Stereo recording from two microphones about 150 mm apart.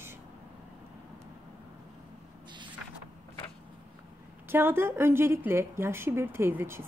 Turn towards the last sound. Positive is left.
turn(degrees=-15)  # may be behind; listen again after turning